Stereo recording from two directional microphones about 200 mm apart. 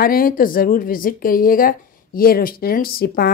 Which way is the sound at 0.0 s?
45° left (ahead or behind).